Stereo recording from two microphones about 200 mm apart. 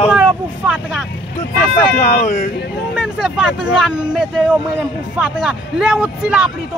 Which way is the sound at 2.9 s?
Centre (ahead or behind).